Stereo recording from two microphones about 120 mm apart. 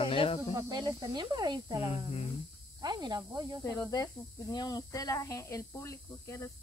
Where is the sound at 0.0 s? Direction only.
50° left (ahead or behind).